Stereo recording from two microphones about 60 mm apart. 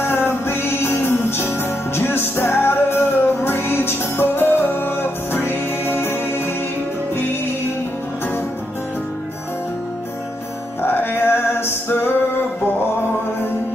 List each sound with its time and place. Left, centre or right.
0.0 s music: left
10.8 s music: left